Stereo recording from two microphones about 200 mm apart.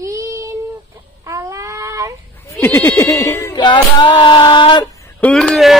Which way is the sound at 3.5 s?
25° left (ahead or behind).